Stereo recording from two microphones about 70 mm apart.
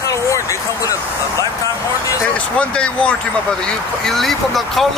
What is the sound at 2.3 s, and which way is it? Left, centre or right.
Speech, centre.